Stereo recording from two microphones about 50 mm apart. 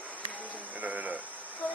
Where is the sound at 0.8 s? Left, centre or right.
Right.